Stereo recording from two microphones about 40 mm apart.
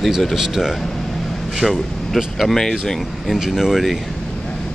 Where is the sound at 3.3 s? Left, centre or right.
Centre.